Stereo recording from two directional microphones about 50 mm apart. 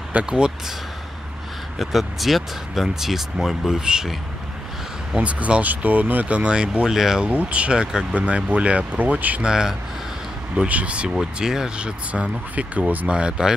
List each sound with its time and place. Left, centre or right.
0.1 s speech: right
1.8 s speech: centre
5.1 s speech: right; by 7.2 s centre
7.2 s speech: right
9.4 s speech: centre
10.5 s speech: right
12.1 s speech: right
13.1 s speech: centre